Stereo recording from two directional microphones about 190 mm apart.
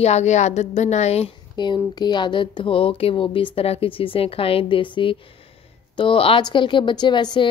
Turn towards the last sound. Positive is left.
turn(degrees=25)  # may be behind; listen again after turning